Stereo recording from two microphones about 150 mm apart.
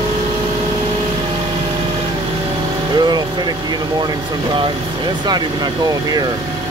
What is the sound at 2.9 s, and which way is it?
Vehicle, 30° right (ahead or behind).